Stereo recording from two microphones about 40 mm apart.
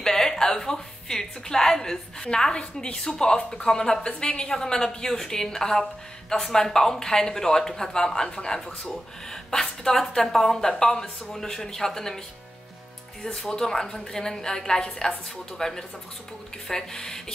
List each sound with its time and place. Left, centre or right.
0.0 s a woman's voice: centre
13.5 s speech: centre